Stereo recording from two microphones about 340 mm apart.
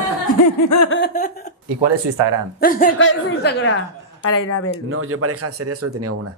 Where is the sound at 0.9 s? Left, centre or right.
Left.